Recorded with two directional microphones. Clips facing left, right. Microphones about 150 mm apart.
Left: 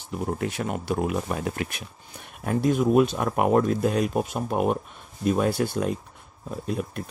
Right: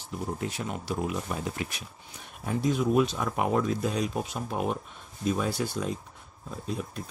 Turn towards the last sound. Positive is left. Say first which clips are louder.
# left 5 dB
turn(degrees=60)  # may be behind; listen again after turning